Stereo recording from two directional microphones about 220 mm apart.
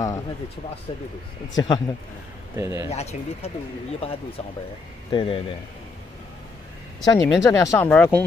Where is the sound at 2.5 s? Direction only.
10° right (ahead or behind).